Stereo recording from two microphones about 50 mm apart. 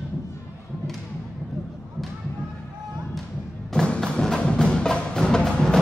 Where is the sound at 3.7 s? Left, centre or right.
Centre.